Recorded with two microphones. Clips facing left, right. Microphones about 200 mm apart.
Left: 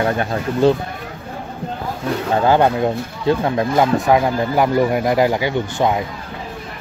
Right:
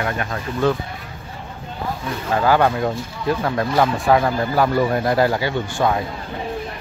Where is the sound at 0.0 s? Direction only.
30° left (ahead or behind).